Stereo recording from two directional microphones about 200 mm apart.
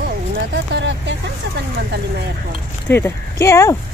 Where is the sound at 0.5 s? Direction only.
65° right (ahead or behind).